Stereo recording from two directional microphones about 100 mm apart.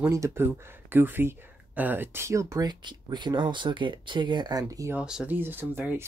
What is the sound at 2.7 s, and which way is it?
Speech, 50° right (ahead or behind).